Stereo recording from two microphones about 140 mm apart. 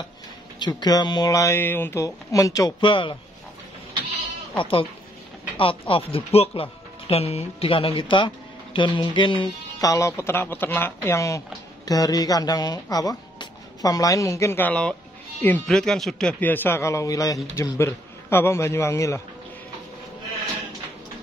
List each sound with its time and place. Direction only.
0.6 s speech: 30° left (ahead or behind)
2.8 s speech: 35° left (ahead or behind)
4.6 s speech: 40° left (ahead or behind); by 19.2 s 20° left (ahead or behind)